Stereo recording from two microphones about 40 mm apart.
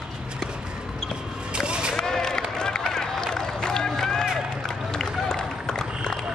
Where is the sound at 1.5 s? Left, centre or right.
Right.